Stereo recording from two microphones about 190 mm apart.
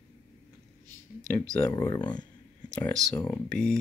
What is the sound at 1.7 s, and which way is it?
Speech, 20° left (ahead or behind).